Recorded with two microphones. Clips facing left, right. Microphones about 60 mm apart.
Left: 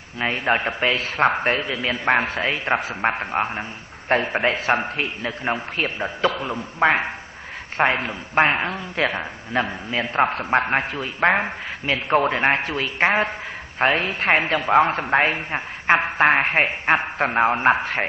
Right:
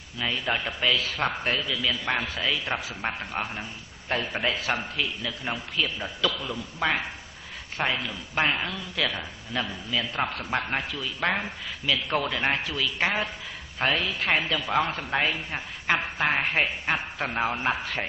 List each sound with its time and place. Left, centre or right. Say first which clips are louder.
0.2 s speech: left 7 dB; left